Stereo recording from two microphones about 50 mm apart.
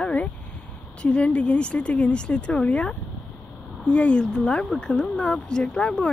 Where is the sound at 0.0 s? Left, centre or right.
Left.